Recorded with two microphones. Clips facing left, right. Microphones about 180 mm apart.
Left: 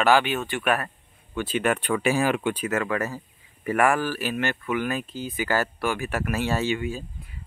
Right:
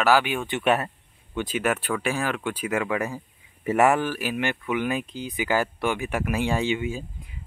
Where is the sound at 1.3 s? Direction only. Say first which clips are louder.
Left 1 dB; 10° right (ahead or behind); by 2.5 s 10° left (ahead or behind).